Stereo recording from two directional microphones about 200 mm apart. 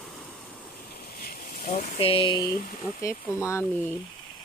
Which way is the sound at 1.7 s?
30° left (ahead or behind).